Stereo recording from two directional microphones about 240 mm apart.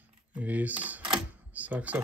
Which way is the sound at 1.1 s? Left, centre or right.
Centre.